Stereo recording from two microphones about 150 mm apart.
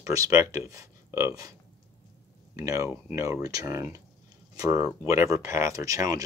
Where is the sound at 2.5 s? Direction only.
20° right (ahead or behind).